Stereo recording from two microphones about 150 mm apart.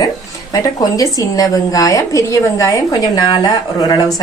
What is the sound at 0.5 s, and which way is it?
A woman's voice, 25° left (ahead or behind).